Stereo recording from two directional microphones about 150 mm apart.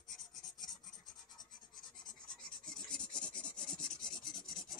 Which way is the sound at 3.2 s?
5° left (ahead or behind).